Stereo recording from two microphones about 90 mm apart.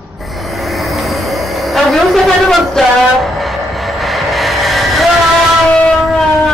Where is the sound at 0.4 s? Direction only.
Centre (ahead or behind).